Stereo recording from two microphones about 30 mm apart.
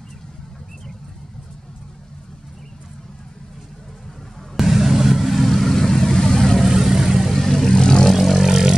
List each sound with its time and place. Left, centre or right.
4.6 s vehicle: centre
5.3 s vehicle: centre
6.6 s vehicle: centre
7.3 s vehicle: centre
7.7 s vehicle: left
8.1 s vehicle: centre